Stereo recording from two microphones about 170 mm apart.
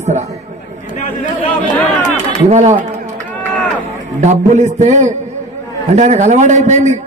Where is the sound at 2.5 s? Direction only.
45° right (ahead or behind).